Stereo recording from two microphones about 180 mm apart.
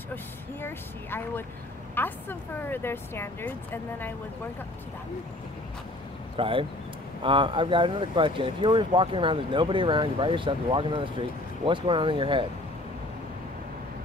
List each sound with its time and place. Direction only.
0.1 s speech: 10° left (ahead or behind)
6.3 s speech: 30° right (ahead or behind)